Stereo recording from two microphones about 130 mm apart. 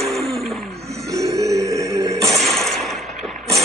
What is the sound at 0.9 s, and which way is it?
Music, 25° right (ahead or behind).